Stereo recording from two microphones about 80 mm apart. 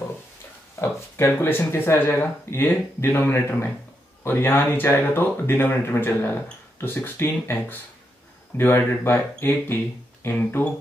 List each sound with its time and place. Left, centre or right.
0.7 s speech: left